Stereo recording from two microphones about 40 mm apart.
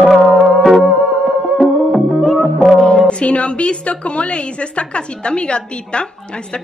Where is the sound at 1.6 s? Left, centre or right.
Centre.